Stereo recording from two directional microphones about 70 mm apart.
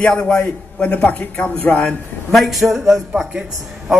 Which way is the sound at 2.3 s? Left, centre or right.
Centre.